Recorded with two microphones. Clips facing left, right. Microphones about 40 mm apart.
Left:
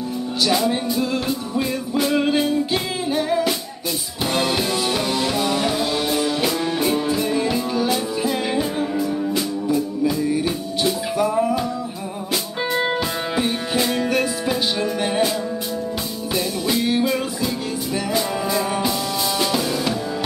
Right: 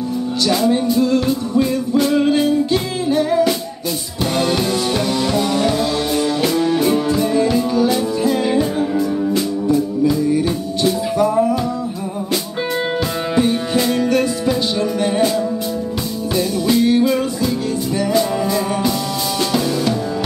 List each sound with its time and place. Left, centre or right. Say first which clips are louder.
0.5 s music: right 5 dB; centre
13.4 s music: right 6 dB; centre
16.3 s music: right 6 dB; centre